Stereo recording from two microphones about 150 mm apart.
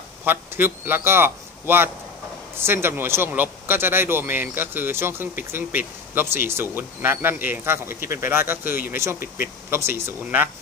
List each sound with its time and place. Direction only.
0.2 s a man's voice: 15° right (ahead or behind)